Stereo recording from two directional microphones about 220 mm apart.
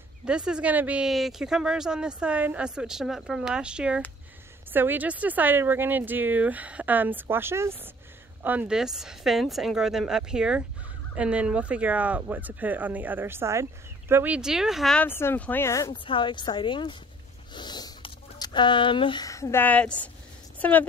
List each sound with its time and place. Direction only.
0.2 s a woman's voice: 5° right (ahead or behind)